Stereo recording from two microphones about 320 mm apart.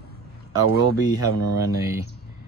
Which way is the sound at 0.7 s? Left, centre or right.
Left.